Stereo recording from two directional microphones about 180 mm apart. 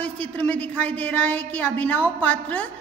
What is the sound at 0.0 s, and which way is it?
A woman's voice, 10° left (ahead or behind).